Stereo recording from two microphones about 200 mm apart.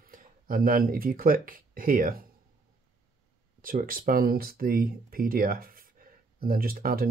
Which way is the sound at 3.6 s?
45° right (ahead or behind).